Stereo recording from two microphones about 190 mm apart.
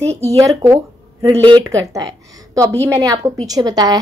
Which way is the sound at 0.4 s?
15° right (ahead or behind).